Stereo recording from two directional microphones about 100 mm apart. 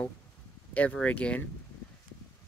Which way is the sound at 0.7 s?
15° left (ahead or behind).